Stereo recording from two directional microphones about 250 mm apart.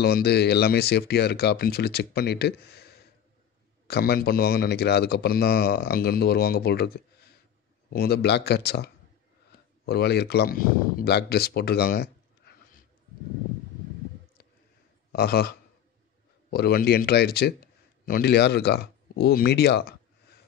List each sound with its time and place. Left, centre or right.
0.0 s speech: left
15.1 s speech: left